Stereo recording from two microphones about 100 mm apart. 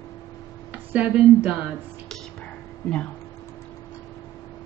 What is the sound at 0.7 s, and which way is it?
Speech, 15° right (ahead or behind).